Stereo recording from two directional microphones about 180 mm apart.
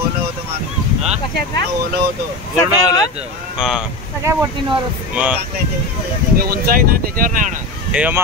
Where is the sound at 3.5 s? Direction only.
5° right (ahead or behind).